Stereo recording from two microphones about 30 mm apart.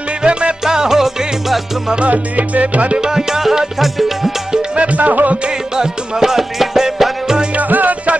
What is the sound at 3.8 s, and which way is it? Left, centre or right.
Music, centre.